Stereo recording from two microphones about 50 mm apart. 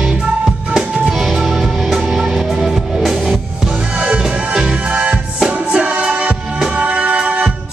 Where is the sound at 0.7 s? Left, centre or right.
Centre.